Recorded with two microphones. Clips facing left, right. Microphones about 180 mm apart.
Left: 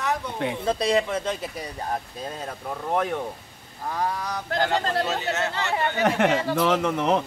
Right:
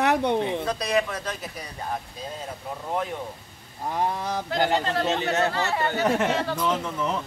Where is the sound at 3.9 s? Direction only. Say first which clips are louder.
Right 1 dB; 25° right (ahead or behind).